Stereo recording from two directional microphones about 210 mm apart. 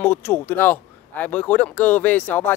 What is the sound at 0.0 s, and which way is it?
Speech, 10° left (ahead or behind).